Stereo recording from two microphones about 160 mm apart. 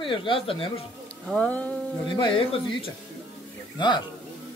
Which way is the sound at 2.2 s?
35° left (ahead or behind).